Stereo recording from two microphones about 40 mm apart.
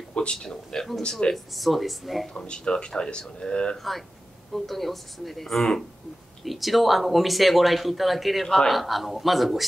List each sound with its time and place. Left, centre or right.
0.1 s speech: left
0.7 s speech: centre
2.3 s speech: left
3.7 s speech: centre